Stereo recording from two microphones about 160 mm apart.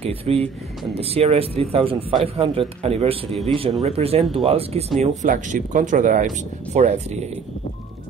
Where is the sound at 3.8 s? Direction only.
40° right (ahead or behind).